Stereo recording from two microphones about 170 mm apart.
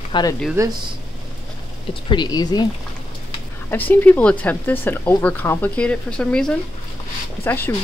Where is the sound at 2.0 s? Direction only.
25° left (ahead or behind).